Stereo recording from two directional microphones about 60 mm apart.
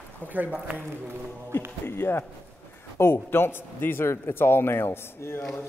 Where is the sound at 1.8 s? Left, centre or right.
Left.